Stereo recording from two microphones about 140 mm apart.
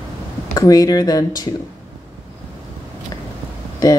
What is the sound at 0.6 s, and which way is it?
Speech, 25° left (ahead or behind).